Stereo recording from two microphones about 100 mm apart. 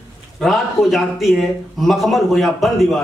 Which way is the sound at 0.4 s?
Centre (ahead or behind).